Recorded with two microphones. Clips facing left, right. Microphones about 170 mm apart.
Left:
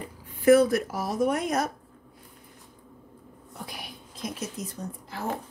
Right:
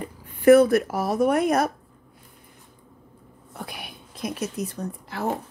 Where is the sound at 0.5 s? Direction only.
60° right (ahead or behind).